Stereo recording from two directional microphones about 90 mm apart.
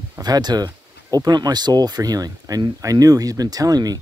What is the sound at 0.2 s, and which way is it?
Speech, 50° right (ahead or behind).